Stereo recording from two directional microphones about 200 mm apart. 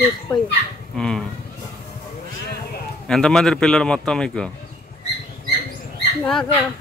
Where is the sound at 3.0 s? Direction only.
5° left (ahead or behind).